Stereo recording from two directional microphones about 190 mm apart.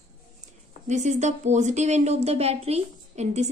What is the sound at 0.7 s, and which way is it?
Speech, 40° right (ahead or behind).